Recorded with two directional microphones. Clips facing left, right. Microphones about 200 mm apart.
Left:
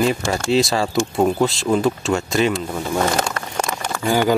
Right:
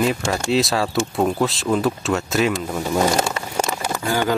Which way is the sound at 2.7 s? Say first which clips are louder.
Right 1 dB; 5° right (ahead or behind).